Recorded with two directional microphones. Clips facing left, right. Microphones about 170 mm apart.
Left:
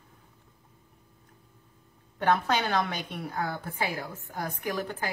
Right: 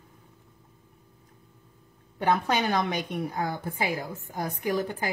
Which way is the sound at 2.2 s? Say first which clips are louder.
Right 1 dB; 15° right (ahead or behind).